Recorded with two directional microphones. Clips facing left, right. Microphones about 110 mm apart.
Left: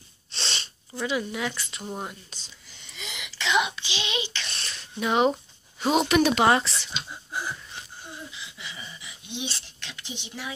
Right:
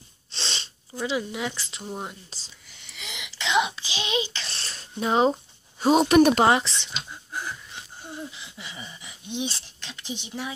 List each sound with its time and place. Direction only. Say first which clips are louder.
0.3 s sneeze: even; 25° right (ahead or behind)
1.0 s speech: even; 20° right (ahead or behind)
2.3 s speech: right 1 dB; 35° right (ahead or behind)
3.0 s a sound: even; 20° right (ahead or behind); by 4.8 s 35° right (ahead or behind)
5.0 s speech: right 1 dB; 35° right (ahead or behind)
6.4 s speech: right 1 dB; 25° right (ahead or behind)
7.1 s a sound: left 3 dB; 10° left (ahead or behind)
8.3 s speech: even; 40° right (ahead or behind)
9.8 s speech: right 4 dB; 25° right (ahead or behind)